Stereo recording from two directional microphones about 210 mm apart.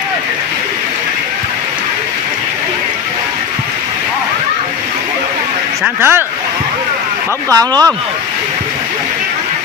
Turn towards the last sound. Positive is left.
turn(degrees=-15)  # may be behind; listen again after turning